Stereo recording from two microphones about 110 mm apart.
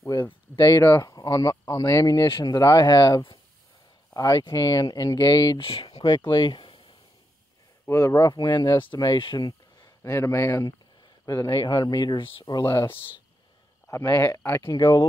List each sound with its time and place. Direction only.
0.7 s speech: 20° left (ahead or behind)
1.0 s speech: 35° left (ahead or behind)
5.6 s speech: 55° left (ahead or behind)
6.0 s speech: 40° left (ahead or behind)
7.9 s speech: 30° left (ahead or behind)
12.7 s speech: 20° left (ahead or behind)
14.7 s speech: 35° left (ahead or behind)